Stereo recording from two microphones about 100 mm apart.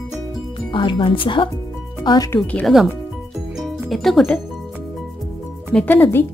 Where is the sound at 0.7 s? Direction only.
50° left (ahead or behind).